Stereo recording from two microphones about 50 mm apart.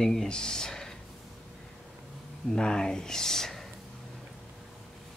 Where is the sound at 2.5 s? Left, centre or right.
Centre.